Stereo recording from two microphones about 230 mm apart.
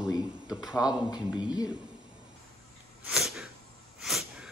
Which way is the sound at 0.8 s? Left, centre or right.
Centre.